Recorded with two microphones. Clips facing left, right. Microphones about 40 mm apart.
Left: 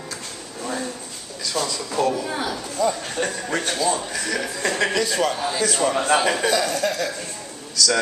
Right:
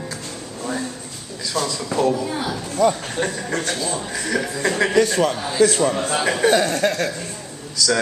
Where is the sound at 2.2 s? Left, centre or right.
Centre.